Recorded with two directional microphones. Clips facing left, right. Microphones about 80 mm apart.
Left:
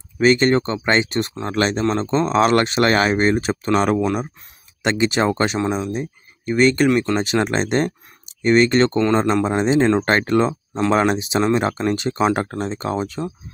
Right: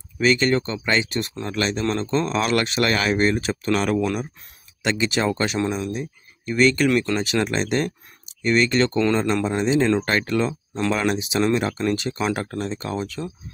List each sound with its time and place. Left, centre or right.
0.2 s speech: left
1.9 s speech: left
8.9 s speech: left